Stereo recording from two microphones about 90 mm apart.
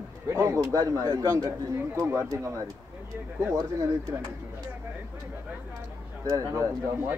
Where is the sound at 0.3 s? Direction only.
35° right (ahead or behind).